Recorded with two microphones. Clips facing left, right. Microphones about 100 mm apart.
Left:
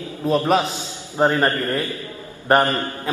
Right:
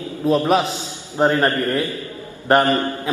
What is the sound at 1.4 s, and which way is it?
Speech, 15° left (ahead or behind).